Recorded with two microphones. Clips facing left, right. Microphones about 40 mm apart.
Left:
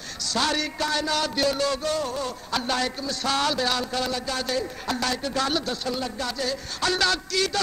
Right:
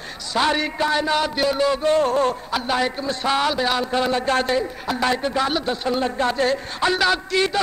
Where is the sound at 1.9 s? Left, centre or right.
Right.